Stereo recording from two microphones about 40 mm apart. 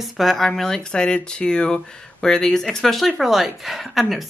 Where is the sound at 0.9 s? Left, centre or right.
Left.